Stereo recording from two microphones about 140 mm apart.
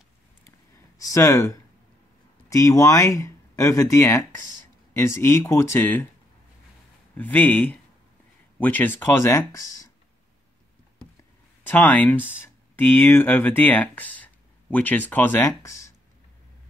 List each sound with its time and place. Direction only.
1.0 s speech: 20° left (ahead or behind)
7.2 s speech: 15° left (ahead or behind)
11.6 s speech: 15° left (ahead or behind)